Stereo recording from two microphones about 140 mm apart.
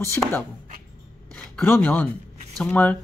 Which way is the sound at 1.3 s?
10° left (ahead or behind).